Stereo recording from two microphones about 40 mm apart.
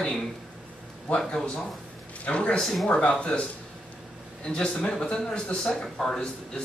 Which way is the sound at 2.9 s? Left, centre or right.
Left.